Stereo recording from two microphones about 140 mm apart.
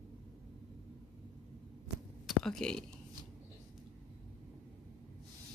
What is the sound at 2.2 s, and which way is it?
Speech, 5° left (ahead or behind).